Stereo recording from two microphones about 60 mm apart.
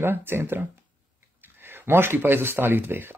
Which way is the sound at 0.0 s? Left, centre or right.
Right.